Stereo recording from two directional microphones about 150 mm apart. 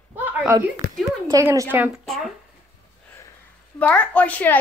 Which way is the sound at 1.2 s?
20° right (ahead or behind).